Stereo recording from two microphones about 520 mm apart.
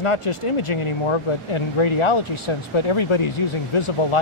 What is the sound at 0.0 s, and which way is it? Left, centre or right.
Speech, left.